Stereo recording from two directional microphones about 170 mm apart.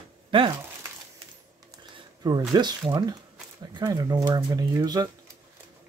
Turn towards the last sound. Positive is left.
turn(degrees=-20)  # may be behind; listen again after turning